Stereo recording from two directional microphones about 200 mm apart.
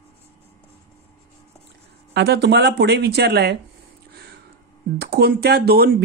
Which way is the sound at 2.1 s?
55° right (ahead or behind).